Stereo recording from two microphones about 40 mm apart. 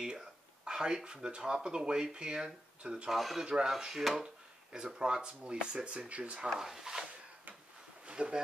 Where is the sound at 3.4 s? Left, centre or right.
Right.